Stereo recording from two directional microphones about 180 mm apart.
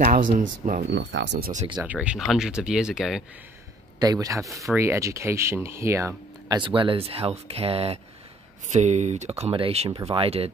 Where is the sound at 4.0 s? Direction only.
20° right (ahead or behind).